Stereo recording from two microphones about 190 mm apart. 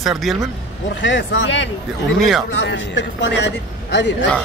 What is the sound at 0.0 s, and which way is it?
Speech, centre (ahead or behind).